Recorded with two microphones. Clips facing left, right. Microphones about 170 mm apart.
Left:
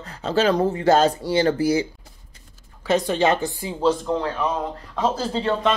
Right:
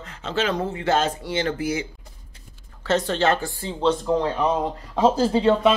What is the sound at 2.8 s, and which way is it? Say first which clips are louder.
Speech: left 1 dB; 15° left (ahead or behind).